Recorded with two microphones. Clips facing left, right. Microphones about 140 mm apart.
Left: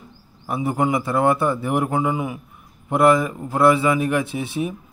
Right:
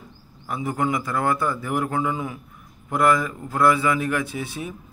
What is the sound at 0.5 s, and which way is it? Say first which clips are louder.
A man's voice: left 4 dB; 20° left (ahead or behind).